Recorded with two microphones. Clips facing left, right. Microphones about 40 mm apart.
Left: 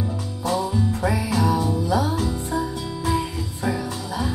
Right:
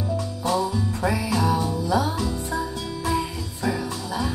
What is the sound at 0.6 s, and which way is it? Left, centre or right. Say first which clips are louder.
Music: left 1 dB; left.